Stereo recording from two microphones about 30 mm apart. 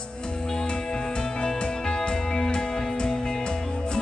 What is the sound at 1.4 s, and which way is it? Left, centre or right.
Music, left.